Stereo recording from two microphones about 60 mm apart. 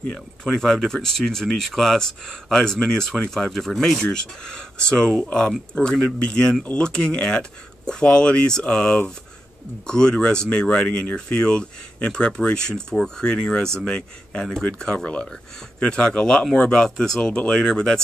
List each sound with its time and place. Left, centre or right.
0.0 s speech: centre